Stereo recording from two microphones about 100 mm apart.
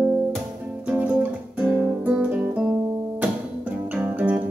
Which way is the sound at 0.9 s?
15° right (ahead or behind).